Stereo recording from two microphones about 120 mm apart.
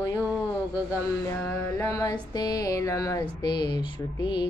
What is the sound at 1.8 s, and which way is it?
Mantra, 25° left (ahead or behind).